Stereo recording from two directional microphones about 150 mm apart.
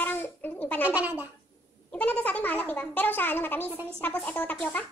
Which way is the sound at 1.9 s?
10° left (ahead or behind).